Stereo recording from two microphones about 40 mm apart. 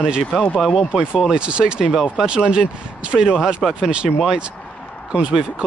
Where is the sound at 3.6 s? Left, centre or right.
Centre.